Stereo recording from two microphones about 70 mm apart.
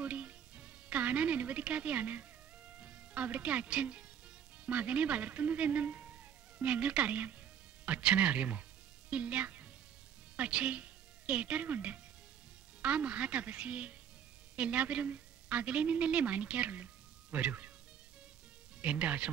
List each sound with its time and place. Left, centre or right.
0.0 s music: centre
4.6 s a man's voice: centre
16.8 s music: right
18.8 s a man's voice: centre